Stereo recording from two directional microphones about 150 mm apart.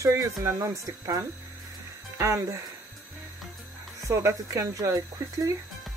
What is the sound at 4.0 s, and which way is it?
Speech, 20° right (ahead or behind).